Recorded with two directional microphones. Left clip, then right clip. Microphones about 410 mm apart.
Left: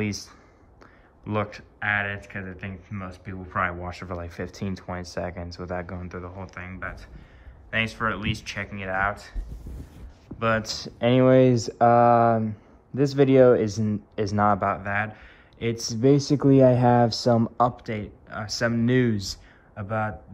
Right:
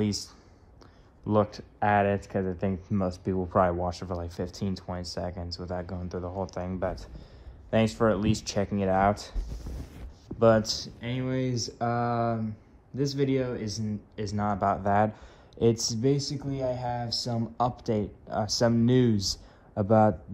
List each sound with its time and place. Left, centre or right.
0.0 s speech: centre
9.9 s a sound: centre
11.2 s speech: centre
13.7 s speech: centre
14.1 s speech: centre